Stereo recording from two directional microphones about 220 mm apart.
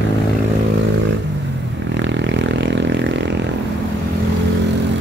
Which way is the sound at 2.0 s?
55° right (ahead or behind).